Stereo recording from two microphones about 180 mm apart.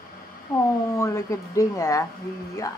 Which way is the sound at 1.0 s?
15° left (ahead or behind).